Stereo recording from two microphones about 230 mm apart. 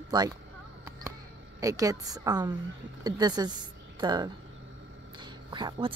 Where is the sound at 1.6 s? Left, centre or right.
Centre.